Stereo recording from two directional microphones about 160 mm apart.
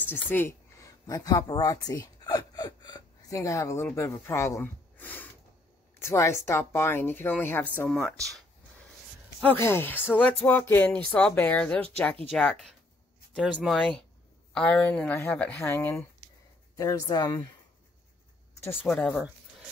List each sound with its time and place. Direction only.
0.0 s speech: 10° left (ahead or behind)
9.4 s speech: 15° left (ahead or behind)
18.9 s speech: 5° left (ahead or behind)